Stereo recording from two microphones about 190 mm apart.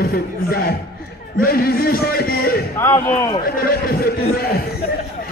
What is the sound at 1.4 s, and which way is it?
A man's voice, 50° left (ahead or behind).